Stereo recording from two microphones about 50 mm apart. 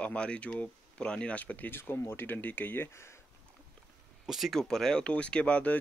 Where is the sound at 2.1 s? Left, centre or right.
Left.